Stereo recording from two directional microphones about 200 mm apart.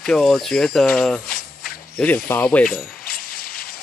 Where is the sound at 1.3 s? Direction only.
45° left (ahead or behind).